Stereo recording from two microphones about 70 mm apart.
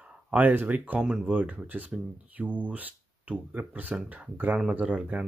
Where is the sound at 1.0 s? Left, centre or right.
Centre.